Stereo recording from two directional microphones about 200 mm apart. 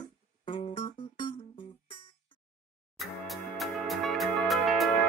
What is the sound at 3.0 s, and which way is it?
Music, centre (ahead or behind).